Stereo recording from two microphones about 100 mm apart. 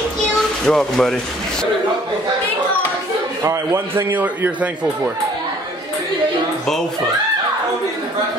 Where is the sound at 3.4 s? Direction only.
25° right (ahead or behind).